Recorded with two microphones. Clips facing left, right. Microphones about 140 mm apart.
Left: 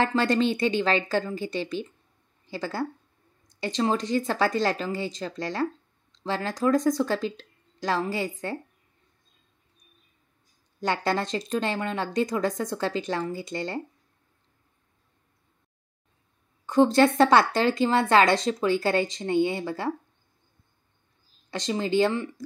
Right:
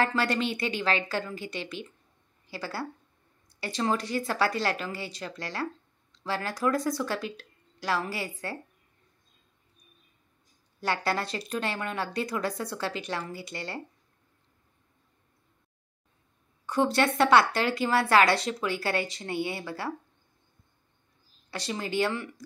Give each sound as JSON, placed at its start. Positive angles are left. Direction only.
{"t": 0.0, "sound": "speech", "side_deg": 25}
{"t": 7.0, "sound": "speech", "side_deg": 30}
{"t": 10.8, "sound": "speech", "side_deg": 25}
{"t": 16.6, "sound": "speech", "side_deg": 30}
{"t": 21.5, "sound": "speech", "side_deg": 25}